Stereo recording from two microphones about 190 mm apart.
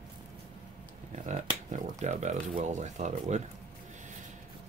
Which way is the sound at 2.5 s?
40° right (ahead or behind).